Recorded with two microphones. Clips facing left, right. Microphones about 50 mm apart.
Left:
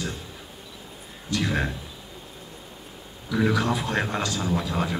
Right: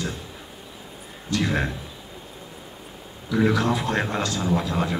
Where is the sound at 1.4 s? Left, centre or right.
Centre.